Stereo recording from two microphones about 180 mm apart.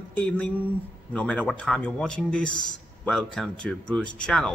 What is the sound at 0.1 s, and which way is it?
Speech, 10° left (ahead or behind).